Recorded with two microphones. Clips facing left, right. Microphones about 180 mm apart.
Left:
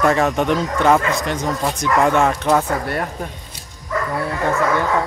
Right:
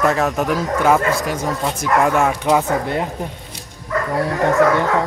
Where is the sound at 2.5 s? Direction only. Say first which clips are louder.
Right 1 dB; 15° right (ahead or behind).